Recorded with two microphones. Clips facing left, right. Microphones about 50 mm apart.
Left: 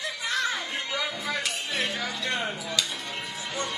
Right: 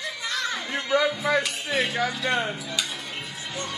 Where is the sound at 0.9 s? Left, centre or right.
Right.